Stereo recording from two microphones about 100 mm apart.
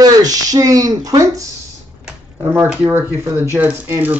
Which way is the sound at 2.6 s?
10° right (ahead or behind).